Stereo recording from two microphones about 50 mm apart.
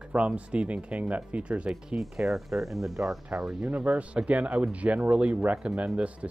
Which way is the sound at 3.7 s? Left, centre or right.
Right.